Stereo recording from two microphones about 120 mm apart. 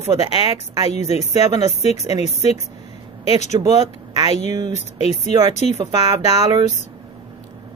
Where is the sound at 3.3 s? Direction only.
75° left (ahead or behind).